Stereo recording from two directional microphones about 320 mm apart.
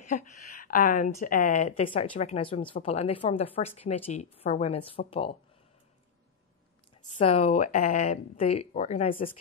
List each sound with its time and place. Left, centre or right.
0.1 s a woman's voice: left
7.2 s a woman's voice: left